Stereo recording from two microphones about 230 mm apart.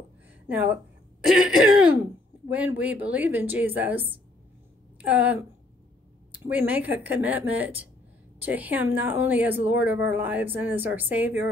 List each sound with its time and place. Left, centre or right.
0.5 s a woman's voice: centre
1.2 s cough: centre
2.5 s a woman's voice: centre